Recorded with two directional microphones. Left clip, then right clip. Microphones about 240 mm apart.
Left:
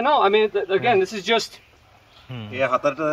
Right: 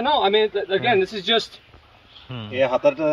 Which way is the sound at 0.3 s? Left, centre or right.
Left.